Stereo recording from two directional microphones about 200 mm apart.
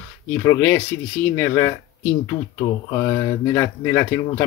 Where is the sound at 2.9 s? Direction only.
15° left (ahead or behind).